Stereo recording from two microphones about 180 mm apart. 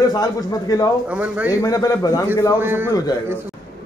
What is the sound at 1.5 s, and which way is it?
Speech, 20° left (ahead or behind).